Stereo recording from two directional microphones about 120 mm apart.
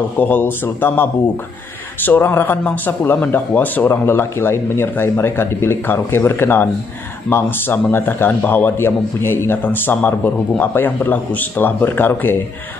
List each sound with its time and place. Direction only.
0.2 s a man's voice: 15° left (ahead or behind)